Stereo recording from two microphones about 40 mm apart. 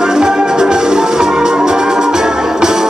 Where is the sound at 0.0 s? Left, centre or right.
Centre.